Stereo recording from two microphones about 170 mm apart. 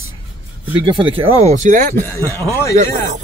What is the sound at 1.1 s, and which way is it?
Speech, 40° right (ahead or behind).